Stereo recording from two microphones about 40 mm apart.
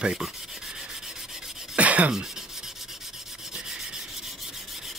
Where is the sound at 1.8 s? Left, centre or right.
Right.